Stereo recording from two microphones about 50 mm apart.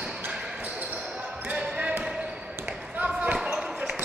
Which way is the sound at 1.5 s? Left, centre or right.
Right.